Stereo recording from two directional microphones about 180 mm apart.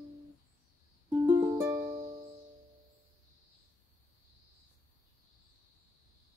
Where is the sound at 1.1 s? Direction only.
15° right (ahead or behind).